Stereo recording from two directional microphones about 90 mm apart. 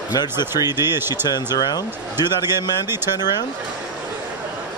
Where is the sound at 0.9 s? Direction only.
25° right (ahead or behind).